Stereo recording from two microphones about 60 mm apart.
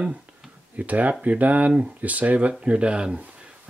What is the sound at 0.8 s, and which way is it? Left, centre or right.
Speech, right.